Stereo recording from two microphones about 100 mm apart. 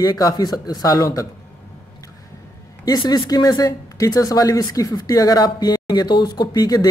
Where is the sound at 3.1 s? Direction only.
40° left (ahead or behind).